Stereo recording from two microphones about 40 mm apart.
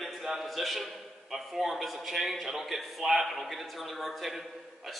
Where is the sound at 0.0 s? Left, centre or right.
Centre.